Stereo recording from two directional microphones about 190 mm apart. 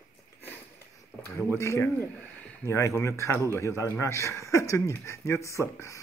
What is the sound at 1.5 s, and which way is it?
Speech, 15° left (ahead or behind).